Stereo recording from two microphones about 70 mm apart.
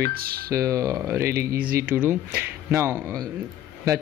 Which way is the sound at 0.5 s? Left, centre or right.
Right.